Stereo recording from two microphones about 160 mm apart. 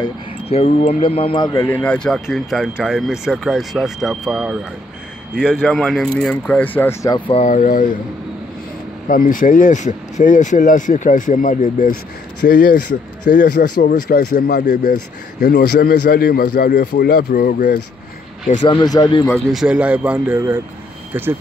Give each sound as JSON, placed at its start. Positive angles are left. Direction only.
{"t": 0.5, "sound": "speech", "side_deg": 35}
{"t": 1.5, "sound": "speech", "side_deg": 20}
{"t": 1.8, "sound": "speech", "side_deg": 5}
{"t": 7.2, "sound": "speech", "side_deg": 35}
{"t": 7.4, "sound": "speech", "side_deg": 55}
{"t": 9.0, "sound": "speech", "side_deg": 60}
{"t": 15.4, "sound": "speech", "side_deg": 90}
{"t": 17.3, "sound": "speech", "side_deg": 60}
{"t": 18.6, "sound": "speech", "side_deg": 30}
{"t": 19.5, "sound": "speech", "side_deg": -5}